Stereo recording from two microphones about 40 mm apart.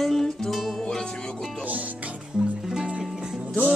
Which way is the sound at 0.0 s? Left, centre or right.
Centre.